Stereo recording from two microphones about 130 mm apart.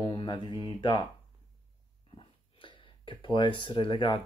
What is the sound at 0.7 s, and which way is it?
Speech, 35° left (ahead or behind).